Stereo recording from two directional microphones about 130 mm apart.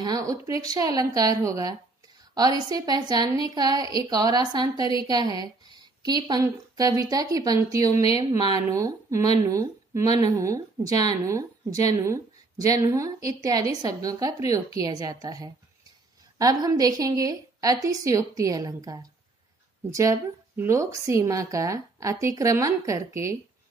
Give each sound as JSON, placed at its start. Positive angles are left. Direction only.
{"t": 0.0, "sound": "a woman's voice", "side_deg": -30}